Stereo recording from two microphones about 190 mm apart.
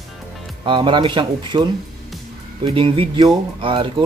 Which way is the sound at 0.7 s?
25° right (ahead or behind).